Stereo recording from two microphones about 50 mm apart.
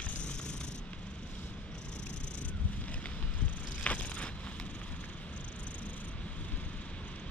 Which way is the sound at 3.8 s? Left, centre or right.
Left.